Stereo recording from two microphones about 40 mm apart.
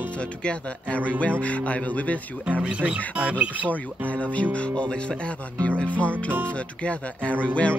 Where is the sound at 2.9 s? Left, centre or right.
Right.